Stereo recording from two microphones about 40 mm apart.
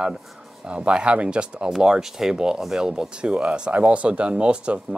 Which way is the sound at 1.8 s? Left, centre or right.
Centre.